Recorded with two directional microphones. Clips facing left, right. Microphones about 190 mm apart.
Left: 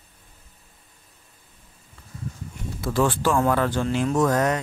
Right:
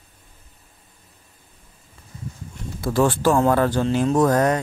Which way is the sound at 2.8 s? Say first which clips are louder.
Right 3 dB; 40° right (ahead or behind).